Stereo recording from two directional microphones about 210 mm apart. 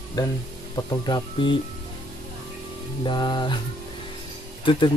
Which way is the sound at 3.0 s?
20° left (ahead or behind).